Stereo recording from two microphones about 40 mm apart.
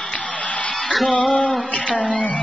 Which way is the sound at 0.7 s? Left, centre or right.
Centre.